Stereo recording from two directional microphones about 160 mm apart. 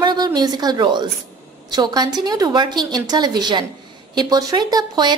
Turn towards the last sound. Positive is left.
turn(degrees=-25)  # may be behind; listen again after turning